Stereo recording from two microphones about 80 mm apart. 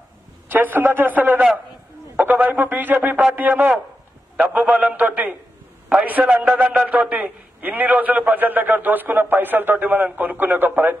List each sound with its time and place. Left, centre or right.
0.5 s a man's voice: right